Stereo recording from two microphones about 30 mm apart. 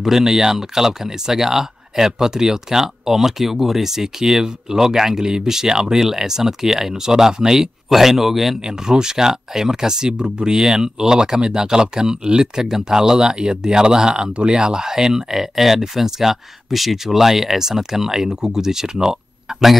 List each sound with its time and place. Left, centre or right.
0.2 s speech: centre
8.6 s speech: right